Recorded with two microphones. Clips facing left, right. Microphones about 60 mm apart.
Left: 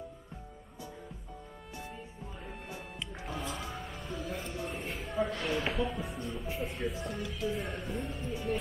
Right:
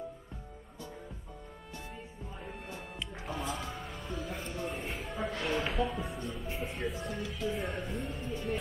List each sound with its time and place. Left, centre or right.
2.4 s music: centre
5.4 s speech: centre